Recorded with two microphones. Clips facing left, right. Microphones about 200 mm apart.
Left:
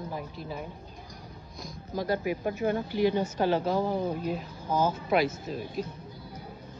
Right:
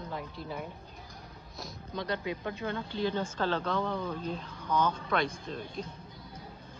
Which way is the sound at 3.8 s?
40° left (ahead or behind).